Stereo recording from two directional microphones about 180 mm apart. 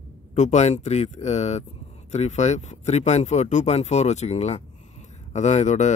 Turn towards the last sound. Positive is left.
turn(degrees=40)  # may be behind; listen again after turning